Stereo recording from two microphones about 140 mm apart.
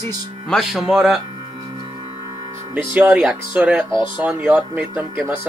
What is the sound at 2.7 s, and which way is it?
Speech, 10° right (ahead or behind).